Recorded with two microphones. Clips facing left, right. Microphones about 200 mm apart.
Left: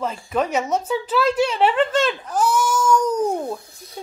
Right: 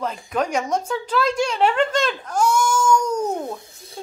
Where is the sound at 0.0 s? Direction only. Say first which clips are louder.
Left 1 dB; 5° left (ahead or behind).